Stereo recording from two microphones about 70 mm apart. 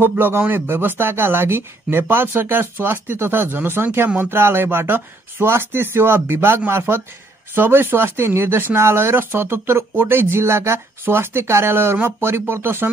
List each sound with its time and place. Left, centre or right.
0.0 s speech: right